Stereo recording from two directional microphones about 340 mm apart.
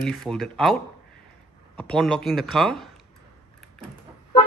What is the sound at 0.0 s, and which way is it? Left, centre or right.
Speech, centre.